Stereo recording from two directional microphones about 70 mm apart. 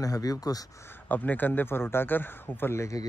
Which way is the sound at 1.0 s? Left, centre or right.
Left.